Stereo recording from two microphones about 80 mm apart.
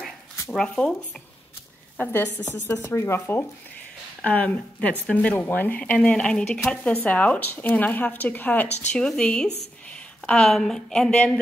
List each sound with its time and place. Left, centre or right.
0.5 s speech: centre
2.0 s speech: left
4.2 s speech: centre
8.9 s a woman's voice: centre